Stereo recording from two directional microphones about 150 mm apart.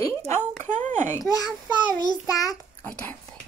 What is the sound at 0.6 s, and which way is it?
Speech, 55° right (ahead or behind).